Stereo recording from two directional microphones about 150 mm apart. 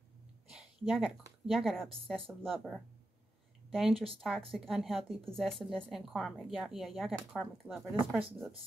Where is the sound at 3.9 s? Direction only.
40° right (ahead or behind).